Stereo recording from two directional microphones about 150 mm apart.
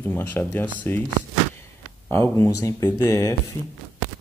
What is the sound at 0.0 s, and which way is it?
Speech, 10° left (ahead or behind).